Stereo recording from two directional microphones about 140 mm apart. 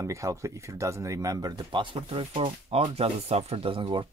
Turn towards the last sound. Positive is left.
turn(degrees=-35)  # may be behind; listen again after turning